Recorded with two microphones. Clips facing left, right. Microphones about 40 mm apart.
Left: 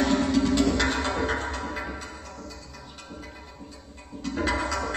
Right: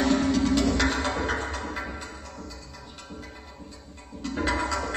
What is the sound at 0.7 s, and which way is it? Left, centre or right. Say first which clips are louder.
Music: even; left.